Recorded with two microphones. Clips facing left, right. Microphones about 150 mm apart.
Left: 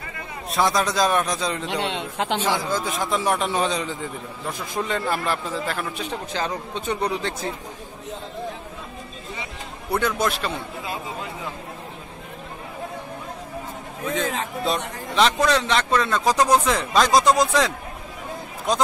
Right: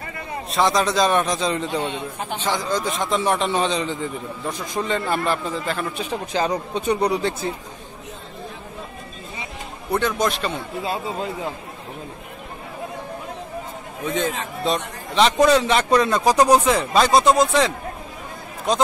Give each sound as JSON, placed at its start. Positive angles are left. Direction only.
{"t": 0.5, "sound": "a man's voice", "side_deg": 0}
{"t": 1.7, "sound": "a man's voice", "side_deg": 85}
{"t": 2.4, "sound": "a man's voice", "side_deg": 10}
{"t": 6.0, "sound": "speech", "side_deg": -10}
{"t": 9.8, "sound": "a man's voice", "side_deg": 5}
{"t": 14.1, "sound": "a man's voice", "side_deg": 0}
{"t": 15.3, "sound": "speech", "side_deg": -10}